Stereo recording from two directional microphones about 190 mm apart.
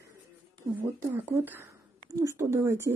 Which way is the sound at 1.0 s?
10° right (ahead or behind).